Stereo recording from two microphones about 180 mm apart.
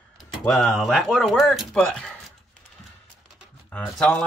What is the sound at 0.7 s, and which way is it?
Speech, centre (ahead or behind).